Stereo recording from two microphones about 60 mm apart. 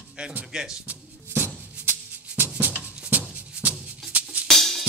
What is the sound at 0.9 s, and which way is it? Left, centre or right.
Shuffle, right.